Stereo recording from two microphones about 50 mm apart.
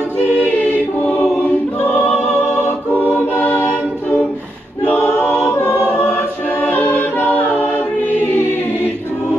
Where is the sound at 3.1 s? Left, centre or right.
Left.